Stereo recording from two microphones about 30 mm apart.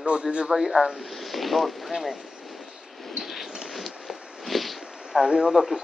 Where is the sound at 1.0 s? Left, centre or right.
Centre.